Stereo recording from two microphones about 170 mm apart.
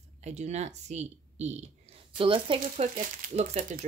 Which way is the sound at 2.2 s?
30° right (ahead or behind).